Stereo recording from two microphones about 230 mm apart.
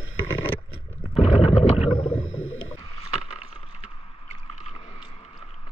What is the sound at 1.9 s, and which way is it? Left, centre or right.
Whale vocalization, left.